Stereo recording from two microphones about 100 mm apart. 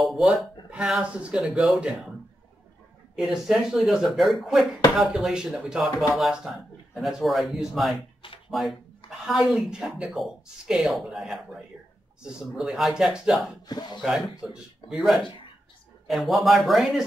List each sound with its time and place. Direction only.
0.0 s speech: centre (ahead or behind)
0.7 s a man's voice: 10° right (ahead or behind)
3.2 s speech: 5° right (ahead or behind)
13.7 s speech: 45° left (ahead or behind)
14.0 s speech: 5° right (ahead or behind)